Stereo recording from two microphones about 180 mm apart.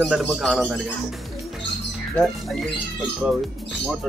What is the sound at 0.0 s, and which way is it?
Speech, centre (ahead or behind).